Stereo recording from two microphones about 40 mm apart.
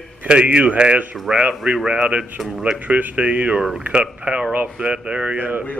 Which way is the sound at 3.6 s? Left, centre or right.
Centre.